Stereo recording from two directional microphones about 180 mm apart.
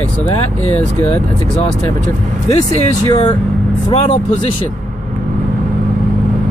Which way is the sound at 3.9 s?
30° left (ahead or behind).